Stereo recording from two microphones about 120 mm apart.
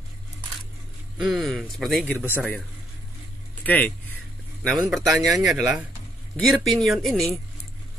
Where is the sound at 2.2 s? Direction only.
15° left (ahead or behind).